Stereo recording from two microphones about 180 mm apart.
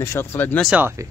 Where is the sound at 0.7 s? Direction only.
10° right (ahead or behind).